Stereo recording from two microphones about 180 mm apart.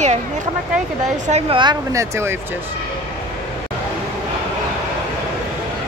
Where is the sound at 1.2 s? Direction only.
40° right (ahead or behind).